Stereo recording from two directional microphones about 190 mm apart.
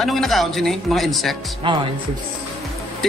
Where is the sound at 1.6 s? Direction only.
25° right (ahead or behind).